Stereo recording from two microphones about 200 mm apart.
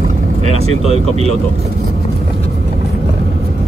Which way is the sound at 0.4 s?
30° right (ahead or behind).